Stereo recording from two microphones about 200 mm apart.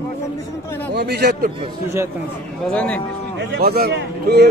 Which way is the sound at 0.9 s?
50° right (ahead or behind).